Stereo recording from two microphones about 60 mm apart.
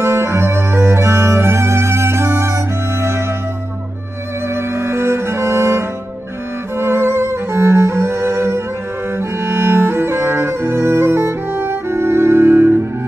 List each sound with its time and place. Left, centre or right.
0.0 s music: right
4.6 s music: right